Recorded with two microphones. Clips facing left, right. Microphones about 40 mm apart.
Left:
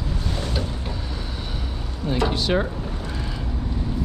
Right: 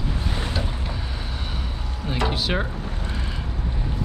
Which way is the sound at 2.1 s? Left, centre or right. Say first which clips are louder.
Left 3 dB; centre.